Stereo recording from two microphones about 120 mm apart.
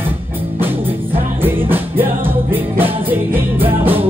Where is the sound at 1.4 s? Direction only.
15° right (ahead or behind).